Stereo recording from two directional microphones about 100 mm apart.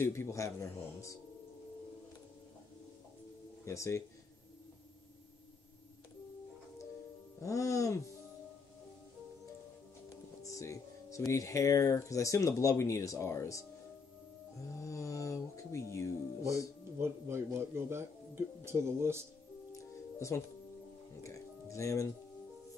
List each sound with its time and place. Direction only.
0.0 s a man's voice: 25° left (ahead or behind)
3.6 s speech: 30° left (ahead or behind)
7.3 s speech: 30° left (ahead or behind)
10.0 s speech: 30° left (ahead or behind)
14.8 s music: 30° left (ahead or behind)
17.0 s speech: 25° right (ahead or behind)
19.7 s music: 30° left (ahead or behind)